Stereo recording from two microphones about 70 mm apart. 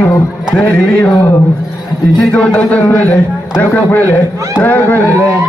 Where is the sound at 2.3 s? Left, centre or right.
Centre.